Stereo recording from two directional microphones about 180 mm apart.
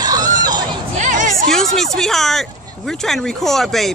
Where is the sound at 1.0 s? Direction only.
45° right (ahead or behind).